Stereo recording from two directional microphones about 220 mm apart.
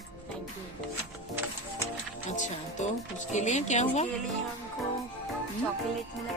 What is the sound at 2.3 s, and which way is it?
Speech, 35° left (ahead or behind).